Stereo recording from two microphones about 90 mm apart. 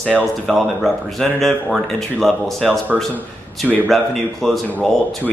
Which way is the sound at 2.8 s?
20° right (ahead or behind).